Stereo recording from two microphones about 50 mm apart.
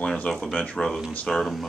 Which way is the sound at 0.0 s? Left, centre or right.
Centre.